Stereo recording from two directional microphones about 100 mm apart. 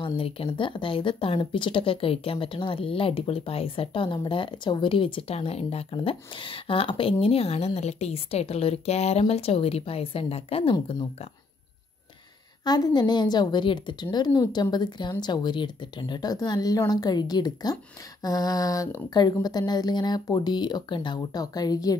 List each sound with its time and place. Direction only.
0.0 s a woman's voice: 65° left (ahead or behind)
12.6 s speech: 45° left (ahead or behind)